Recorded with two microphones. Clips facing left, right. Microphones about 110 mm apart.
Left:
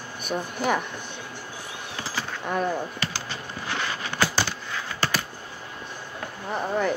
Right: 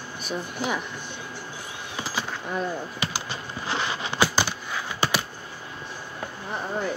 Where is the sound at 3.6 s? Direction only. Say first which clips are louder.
Right 2 dB; 20° right (ahead or behind).